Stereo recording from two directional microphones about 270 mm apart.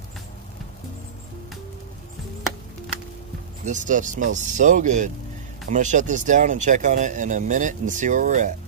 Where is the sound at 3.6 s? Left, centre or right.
Right.